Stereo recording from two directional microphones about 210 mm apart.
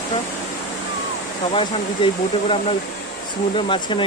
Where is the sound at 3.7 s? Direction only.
25° left (ahead or behind).